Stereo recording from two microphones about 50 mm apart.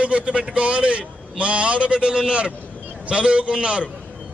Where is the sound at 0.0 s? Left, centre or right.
Right.